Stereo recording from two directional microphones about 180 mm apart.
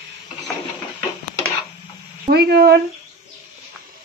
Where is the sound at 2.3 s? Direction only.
60° right (ahead or behind).